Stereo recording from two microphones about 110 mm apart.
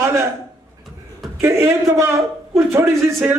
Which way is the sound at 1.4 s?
25° right (ahead or behind).